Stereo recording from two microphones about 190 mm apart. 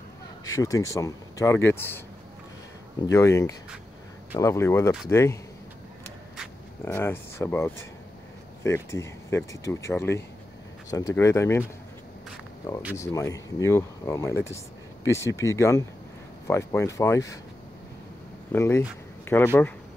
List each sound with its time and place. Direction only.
0.6 s speech: 15° left (ahead or behind)
3.1 s speech: 15° left (ahead or behind)
6.8 s speech: 10° left (ahead or behind)
12.9 s speech: 15° left (ahead or behind)
18.5 s speech: 15° left (ahead or behind)